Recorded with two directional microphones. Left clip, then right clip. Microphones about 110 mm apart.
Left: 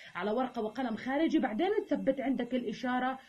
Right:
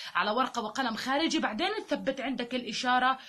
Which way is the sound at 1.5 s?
20° left (ahead or behind).